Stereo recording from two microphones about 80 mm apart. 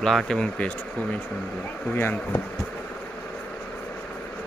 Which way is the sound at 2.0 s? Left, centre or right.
Left.